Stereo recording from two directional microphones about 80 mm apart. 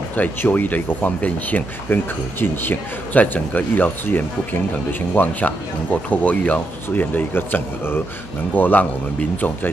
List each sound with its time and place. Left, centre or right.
0.1 s speech: left